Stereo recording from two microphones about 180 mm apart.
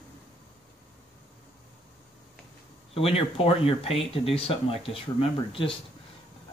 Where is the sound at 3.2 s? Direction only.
30° left (ahead or behind).